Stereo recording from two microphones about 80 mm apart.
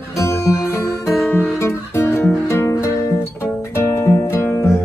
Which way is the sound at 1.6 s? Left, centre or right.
Left.